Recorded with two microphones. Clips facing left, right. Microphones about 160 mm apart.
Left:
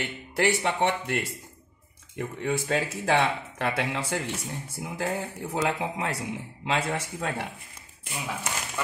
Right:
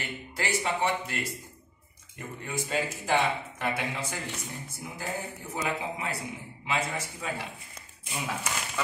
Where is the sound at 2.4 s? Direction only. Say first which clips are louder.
Left 4 dB; 80° left.